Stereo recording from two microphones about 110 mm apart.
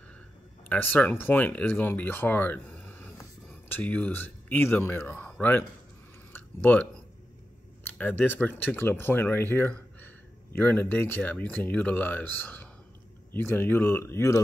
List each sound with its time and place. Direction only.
0.7 s speech: 15° left (ahead or behind)
6.3 s a sound: 15° left (ahead or behind)
7.8 s speech: 15° left (ahead or behind)